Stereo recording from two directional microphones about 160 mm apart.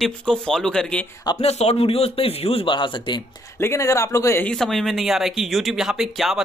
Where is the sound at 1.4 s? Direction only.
40° left (ahead or behind).